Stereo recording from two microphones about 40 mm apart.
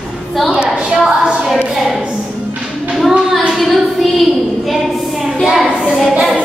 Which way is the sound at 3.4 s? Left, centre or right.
Centre.